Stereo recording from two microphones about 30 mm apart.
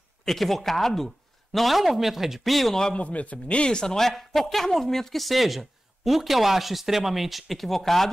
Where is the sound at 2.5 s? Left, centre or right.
Centre.